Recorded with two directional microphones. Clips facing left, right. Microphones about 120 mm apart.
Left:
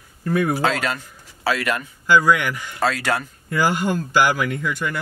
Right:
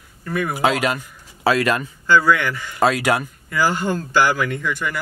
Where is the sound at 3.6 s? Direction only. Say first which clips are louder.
Even; 15° left (ahead or behind).